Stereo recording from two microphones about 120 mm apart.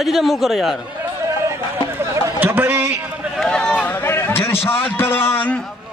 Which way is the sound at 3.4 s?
5° left (ahead or behind).